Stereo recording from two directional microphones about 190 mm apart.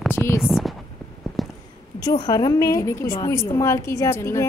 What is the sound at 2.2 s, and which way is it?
A woman's voice, 20° left (ahead or behind).